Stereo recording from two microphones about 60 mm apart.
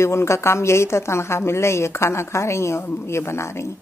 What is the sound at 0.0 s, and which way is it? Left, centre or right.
Speech, left.